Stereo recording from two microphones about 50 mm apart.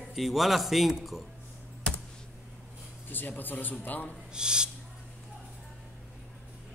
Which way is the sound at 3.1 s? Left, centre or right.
Left.